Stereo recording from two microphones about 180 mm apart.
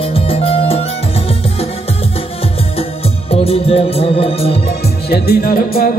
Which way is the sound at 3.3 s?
35° left (ahead or behind).